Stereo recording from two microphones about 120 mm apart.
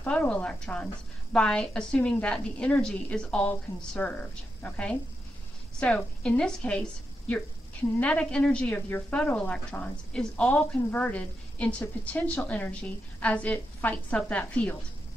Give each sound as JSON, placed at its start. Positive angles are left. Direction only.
{"t": 0.0, "sound": "a woman's voice", "side_deg": 10}